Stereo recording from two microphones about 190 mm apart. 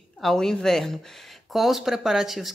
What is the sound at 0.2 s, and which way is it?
Speech, centre (ahead or behind).